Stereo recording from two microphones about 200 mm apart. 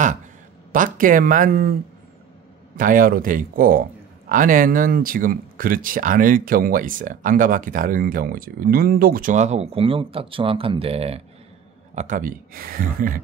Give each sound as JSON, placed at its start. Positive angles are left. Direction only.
{"t": 0.7, "sound": "speech", "side_deg": -45}